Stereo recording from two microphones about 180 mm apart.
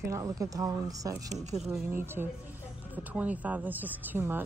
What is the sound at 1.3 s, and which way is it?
Speech, 40° right (ahead or behind).